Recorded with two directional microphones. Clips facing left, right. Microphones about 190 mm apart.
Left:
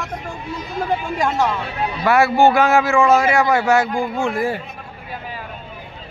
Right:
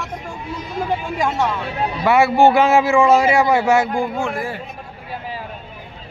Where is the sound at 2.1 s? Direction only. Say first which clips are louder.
Right 1 dB; 25° right (ahead or behind).